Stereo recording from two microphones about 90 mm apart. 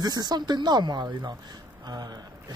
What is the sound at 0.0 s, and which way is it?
Speech, 50° right (ahead or behind).